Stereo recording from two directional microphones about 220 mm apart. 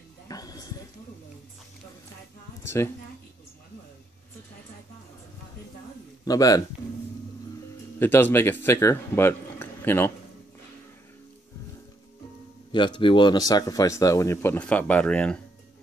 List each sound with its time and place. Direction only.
0.3 s a sound: 15° left (ahead or behind)
2.6 s a woman's voice: 10° left (ahead or behind)
6.2 s speech: 15° left (ahead or behind)
8.0 s speech: 10° left (ahead or behind)
12.7 s speech: 20° left (ahead or behind); by 15.4 s 5° left (ahead or behind)